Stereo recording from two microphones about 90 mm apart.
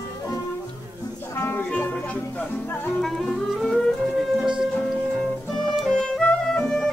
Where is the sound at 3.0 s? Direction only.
5° left (ahead or behind).